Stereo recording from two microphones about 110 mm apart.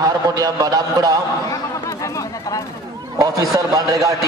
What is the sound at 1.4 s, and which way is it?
Chatter, 30° left (ahead or behind).